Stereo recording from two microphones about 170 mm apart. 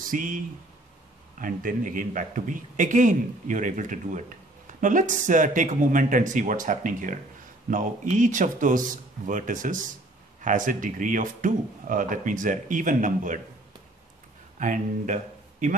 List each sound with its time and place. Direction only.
0.0 s speech: 55° right (ahead or behind)
1.4 s speech: 55° right (ahead or behind)
14.6 s speech: 50° right (ahead or behind)